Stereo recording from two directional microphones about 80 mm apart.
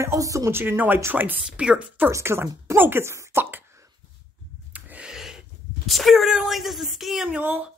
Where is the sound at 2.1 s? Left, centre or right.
Right.